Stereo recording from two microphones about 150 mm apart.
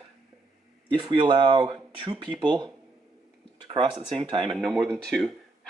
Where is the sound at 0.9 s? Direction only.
35° right (ahead or behind).